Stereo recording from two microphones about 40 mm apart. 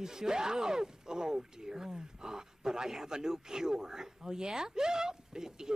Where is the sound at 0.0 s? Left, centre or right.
Centre.